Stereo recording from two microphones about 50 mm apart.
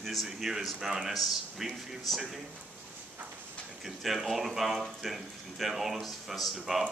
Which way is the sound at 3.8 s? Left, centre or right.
Centre.